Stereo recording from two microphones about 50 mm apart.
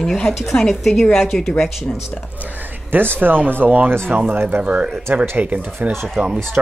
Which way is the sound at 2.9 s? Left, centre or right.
Right.